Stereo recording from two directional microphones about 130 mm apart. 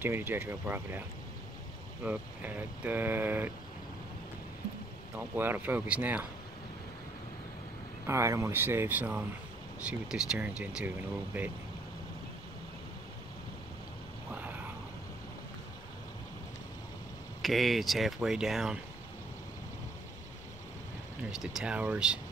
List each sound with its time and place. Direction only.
0.0 s speech: 15° right (ahead or behind)
2.0 s speech: 15° right (ahead or behind)
5.1 s speech: 15° right (ahead or behind)
8.1 s speech: 20° right (ahead or behind)
14.3 s a sound: 15° right (ahead or behind)
17.4 s speech: centre (ahead or behind)
21.3 s speech: 5° right (ahead or behind)